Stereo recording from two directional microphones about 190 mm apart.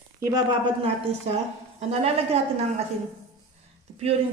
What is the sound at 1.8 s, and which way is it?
A woman's voice, 35° right (ahead or behind).